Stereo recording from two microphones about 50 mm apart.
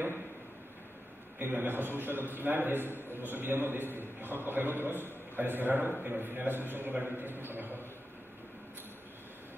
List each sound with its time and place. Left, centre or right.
1.4 s a man's voice: right